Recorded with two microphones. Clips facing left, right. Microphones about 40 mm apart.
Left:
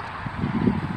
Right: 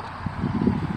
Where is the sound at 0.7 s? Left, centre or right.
Centre.